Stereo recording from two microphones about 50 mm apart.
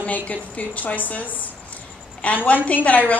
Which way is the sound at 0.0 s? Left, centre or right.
Left.